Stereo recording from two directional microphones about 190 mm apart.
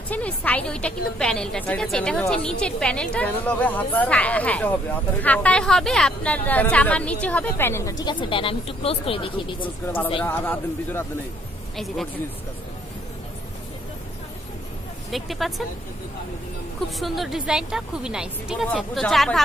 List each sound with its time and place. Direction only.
0.1 s a woman's voice: 10° left (ahead or behind)
8.0 s speech: 25° left (ahead or behind)
10.2 s a woman's voice: 10° left (ahead or behind)
15.0 s a woman's voice: centre (ahead or behind)
17.0 s a woman's voice: centre (ahead or behind)